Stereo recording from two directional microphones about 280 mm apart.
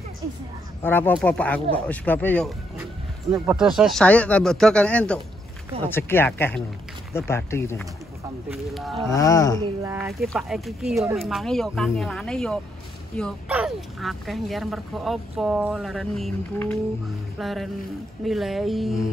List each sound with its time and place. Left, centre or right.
0.8 s speech: centre
9.1 s speech: centre
9.8 s speech: centre